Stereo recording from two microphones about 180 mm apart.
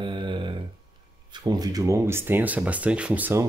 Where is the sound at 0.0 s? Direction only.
25° right (ahead or behind).